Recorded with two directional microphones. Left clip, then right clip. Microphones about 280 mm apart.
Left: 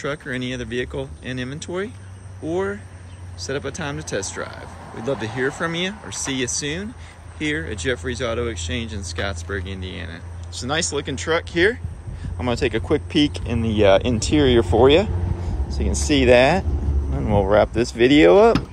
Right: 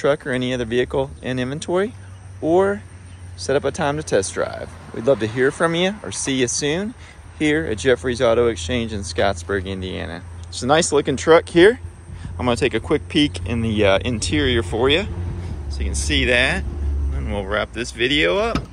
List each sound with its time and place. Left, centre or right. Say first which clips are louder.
0.0 s speech: right 7 dB; centre